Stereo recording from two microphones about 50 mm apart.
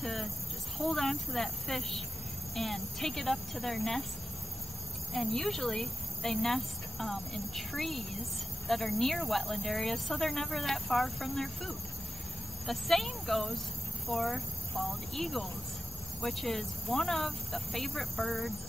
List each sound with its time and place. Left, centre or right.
0.0 s cricket: centre
0.7 s speech: centre
5.1 s speech: centre